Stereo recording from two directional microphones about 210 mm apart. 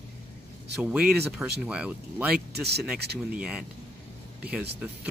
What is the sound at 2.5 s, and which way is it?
Speech, 50° right (ahead or behind).